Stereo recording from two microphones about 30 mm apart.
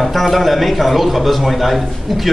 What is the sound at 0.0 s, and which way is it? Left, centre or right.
A man's voice, centre.